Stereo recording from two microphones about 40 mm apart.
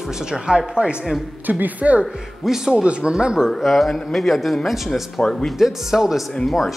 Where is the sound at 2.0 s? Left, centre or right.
Centre.